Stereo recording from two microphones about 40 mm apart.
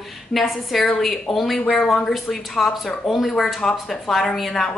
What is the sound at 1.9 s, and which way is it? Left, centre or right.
A woman's voice, centre.